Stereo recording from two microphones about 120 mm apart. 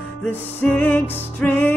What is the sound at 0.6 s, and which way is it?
Music, 15° left (ahead or behind).